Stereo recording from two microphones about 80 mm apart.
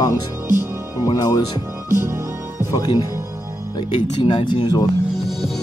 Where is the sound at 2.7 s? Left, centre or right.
Left.